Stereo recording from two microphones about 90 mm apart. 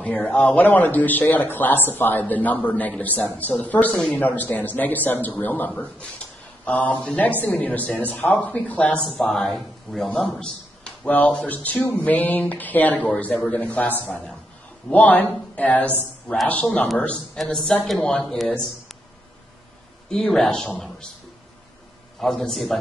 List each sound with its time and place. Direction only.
0.0 s a man's voice: 15° left (ahead or behind)
3.9 s a man's voice: 5° left (ahead or behind)
4.2 s a man's voice: 20° left (ahead or behind); by 10.0 s centre (ahead or behind)
10.0 s a man's voice: 10° left (ahead or behind)
17.4 s a man's voice: 5° left (ahead or behind)
20.1 s a man's voice: 5° left (ahead or behind)
22.2 s a man's voice: 5° left (ahead or behind)